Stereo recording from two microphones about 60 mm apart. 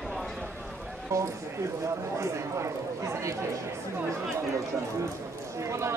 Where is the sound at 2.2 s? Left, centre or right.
Right.